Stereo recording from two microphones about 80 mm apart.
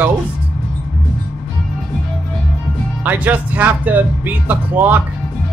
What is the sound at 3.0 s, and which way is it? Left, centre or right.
Speech, right.